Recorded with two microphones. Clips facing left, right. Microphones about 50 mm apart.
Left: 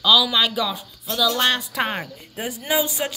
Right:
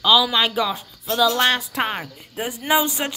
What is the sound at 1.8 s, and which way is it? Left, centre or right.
Cricket, centre.